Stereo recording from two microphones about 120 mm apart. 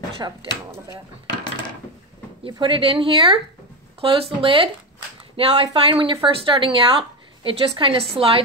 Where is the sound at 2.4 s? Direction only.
45° right (ahead or behind).